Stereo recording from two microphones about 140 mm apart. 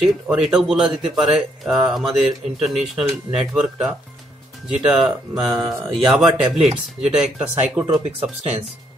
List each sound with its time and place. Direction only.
0.0 s speech: centre (ahead or behind)
5.6 s speech: 30° right (ahead or behind)
6.0 s speech: 5° right (ahead or behind)